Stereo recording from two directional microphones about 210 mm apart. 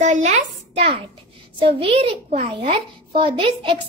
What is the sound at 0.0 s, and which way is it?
A child's voice, 35° right (ahead or behind).